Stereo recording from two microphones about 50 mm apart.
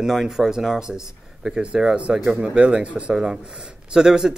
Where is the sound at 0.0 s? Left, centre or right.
Centre.